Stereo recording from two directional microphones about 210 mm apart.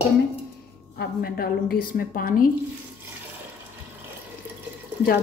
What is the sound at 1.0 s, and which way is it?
A woman's voice, 45° left (ahead or behind).